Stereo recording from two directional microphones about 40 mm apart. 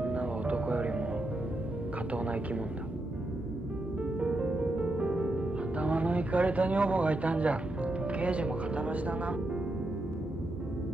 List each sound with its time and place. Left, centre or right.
0.0 s music: right
2.1 s speech: right
4.2 s music: right
5.8 s speech: right